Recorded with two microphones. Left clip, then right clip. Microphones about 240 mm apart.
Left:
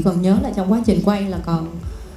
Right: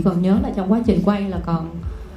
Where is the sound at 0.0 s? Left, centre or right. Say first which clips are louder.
Left 1 dB; left.